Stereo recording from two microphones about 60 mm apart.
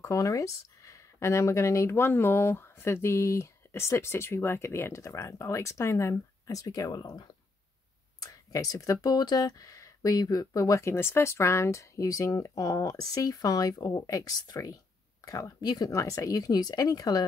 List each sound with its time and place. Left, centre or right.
0.0 s speech: left
8.2 s speech: left
15.2 s speech: left